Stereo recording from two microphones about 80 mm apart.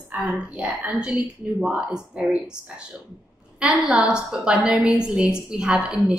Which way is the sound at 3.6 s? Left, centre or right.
Centre.